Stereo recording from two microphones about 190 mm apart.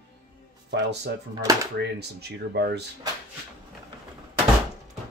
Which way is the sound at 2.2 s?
60° right (ahead or behind).